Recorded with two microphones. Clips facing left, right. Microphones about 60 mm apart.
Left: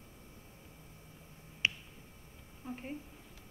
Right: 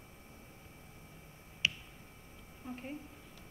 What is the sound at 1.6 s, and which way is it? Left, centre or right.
Finger snapping, left.